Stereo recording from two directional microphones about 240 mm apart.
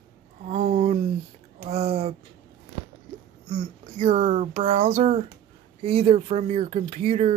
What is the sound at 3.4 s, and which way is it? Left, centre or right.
Speech, right.